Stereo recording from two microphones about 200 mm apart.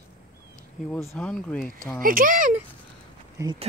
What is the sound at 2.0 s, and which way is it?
Speech, 45° right (ahead or behind).